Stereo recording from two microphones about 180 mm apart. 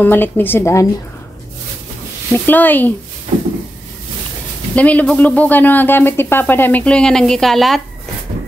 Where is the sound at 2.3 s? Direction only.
10° left (ahead or behind).